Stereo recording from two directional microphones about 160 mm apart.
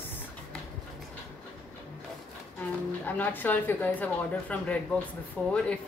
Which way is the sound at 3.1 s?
10° left (ahead or behind).